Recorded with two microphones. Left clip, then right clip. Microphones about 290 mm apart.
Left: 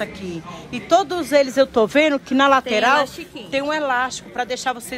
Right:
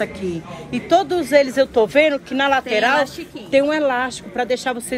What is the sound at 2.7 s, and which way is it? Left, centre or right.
Speech, centre.